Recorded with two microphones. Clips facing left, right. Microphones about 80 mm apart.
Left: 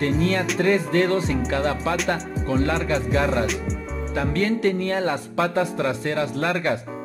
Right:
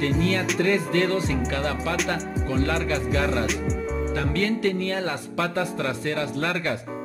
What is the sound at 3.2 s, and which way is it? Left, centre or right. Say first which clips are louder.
Music: left 2 dB; centre.